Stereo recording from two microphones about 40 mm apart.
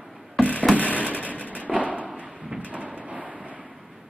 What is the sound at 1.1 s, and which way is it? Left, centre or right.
Vehicle, left.